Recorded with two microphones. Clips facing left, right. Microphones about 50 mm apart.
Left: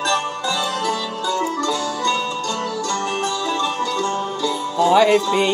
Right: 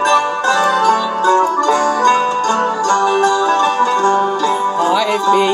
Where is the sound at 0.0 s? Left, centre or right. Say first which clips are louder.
Right 8 dB; right.